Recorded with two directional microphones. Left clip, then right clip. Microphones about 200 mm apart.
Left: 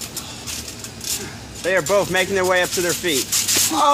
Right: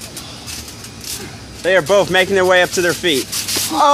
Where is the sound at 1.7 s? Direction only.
30° right (ahead or behind).